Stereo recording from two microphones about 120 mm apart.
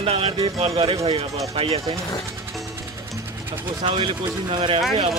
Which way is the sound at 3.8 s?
45° right (ahead or behind).